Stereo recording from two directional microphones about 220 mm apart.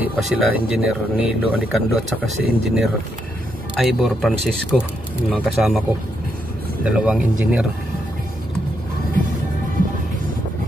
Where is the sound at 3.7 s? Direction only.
Centre (ahead or behind).